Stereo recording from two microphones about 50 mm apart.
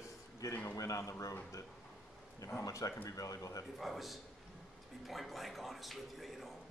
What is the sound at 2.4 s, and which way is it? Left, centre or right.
Speech, left.